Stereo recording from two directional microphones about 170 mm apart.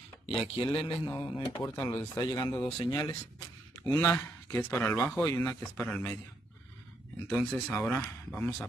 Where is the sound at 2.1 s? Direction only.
20° left (ahead or behind).